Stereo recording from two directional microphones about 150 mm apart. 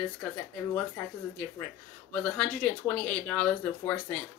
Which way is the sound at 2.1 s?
10° left (ahead or behind).